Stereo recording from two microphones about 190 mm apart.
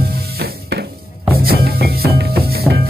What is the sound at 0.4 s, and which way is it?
Music, 60° right (ahead or behind).